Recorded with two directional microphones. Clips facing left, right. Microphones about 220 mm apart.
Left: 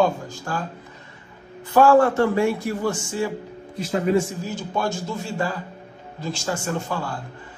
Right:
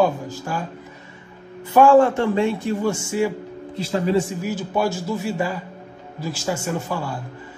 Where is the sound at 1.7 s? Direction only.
15° right (ahead or behind).